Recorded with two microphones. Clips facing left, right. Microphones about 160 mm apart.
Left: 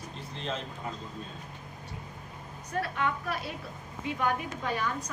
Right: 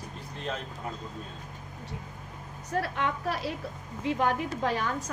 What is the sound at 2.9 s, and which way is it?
A woman's voice, 75° right (ahead or behind).